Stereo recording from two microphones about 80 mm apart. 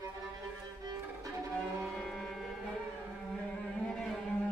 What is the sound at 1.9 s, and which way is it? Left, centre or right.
Music, centre.